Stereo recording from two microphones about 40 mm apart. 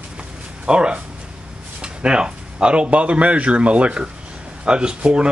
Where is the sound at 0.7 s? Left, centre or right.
Right.